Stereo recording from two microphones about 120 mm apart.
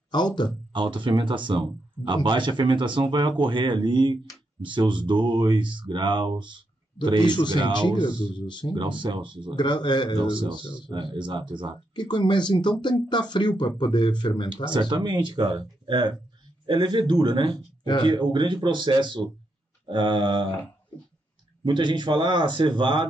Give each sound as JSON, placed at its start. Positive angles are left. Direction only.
{"t": 0.7, "sound": "speech", "side_deg": -40}
{"t": 7.2, "sound": "speech", "side_deg": 40}
{"t": 8.7, "sound": "speech", "side_deg": -40}
{"t": 9.6, "sound": "speech", "side_deg": 40}
{"t": 10.1, "sound": "speech", "side_deg": -45}
{"t": 11.9, "sound": "speech", "side_deg": 40}
{"t": 14.5, "sound": "speech", "side_deg": -40}
{"t": 21.6, "sound": "speech", "side_deg": -40}